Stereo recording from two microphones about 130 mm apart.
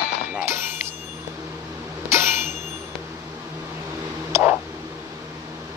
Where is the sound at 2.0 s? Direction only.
20° right (ahead or behind).